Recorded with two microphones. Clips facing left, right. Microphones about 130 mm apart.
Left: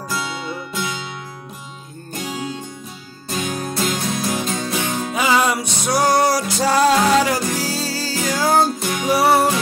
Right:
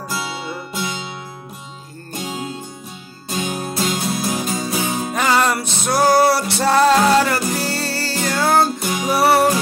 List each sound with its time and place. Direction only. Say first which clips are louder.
0.1 s music: left 1 dB; 5° right (ahead or behind)
3.3 s music: even; 5° right (ahead or behind)
5.1 s music: even; 5° left (ahead or behind)
5.9 s music: right 2 dB; 5° right (ahead or behind)
7.7 s music: right 1 dB; 65° right (ahead or behind)
8.1 s music: even; centre (ahead or behind)